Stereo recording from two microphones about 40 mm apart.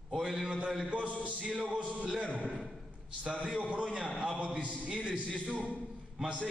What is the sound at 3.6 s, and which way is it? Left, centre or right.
Music, right.